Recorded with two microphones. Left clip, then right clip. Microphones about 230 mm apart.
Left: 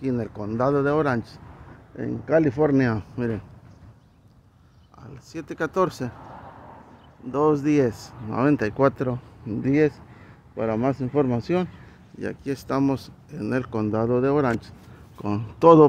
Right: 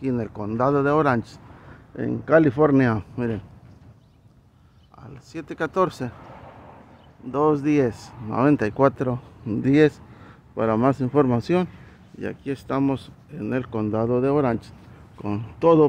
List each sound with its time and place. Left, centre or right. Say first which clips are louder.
0.0 s speech: right 1 dB; centre
5.0 s speech: even; centre
7.2 s speech: even; centre
9.5 s speech: right 3 dB; centre
12.2 s speech: even; centre